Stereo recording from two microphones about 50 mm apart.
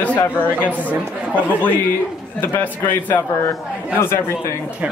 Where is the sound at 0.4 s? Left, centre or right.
Left.